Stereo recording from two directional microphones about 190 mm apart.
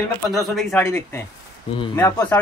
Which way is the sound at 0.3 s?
Centre (ahead or behind).